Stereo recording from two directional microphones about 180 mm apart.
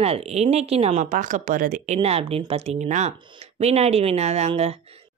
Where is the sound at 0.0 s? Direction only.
35° right (ahead or behind).